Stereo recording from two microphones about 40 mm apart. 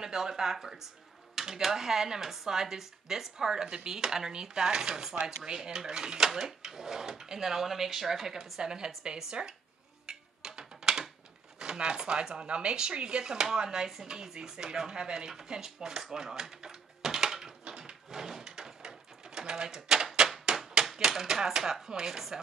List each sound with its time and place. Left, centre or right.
0.0 s speech: centre
10.0 s music: centre
11.6 s speech: right
13.8 s a sound: centre
20.8 s speech: centre